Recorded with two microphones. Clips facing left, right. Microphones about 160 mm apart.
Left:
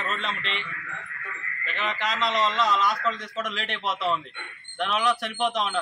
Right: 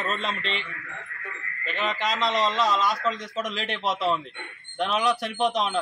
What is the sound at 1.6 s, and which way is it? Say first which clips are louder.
Speech: right 3 dB; 35° right (ahead or behind).